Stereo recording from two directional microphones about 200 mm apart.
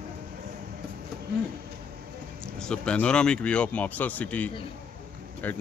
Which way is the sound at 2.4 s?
5° left (ahead or behind).